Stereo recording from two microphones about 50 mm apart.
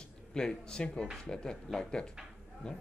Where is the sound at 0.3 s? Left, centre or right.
Centre.